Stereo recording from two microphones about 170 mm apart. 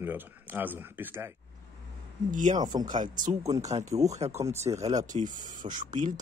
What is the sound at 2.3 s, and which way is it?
Speech, 50° right (ahead or behind).